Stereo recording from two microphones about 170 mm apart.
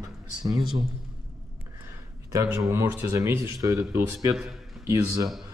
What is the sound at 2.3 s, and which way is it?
Speech, 20° right (ahead or behind).